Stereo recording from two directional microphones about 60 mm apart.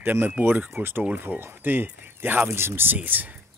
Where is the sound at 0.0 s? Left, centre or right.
Right.